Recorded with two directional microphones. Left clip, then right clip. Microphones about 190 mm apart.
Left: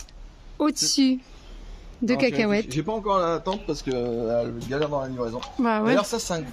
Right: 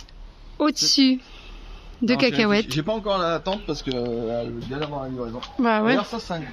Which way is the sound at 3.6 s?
35° right (ahead or behind).